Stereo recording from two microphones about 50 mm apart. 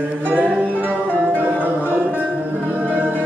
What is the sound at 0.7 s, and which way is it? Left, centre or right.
Music, right.